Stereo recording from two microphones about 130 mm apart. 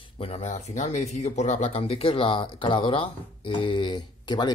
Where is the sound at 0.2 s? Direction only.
55° left (ahead or behind).